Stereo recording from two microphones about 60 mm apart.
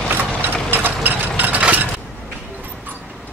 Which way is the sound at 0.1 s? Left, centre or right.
Right.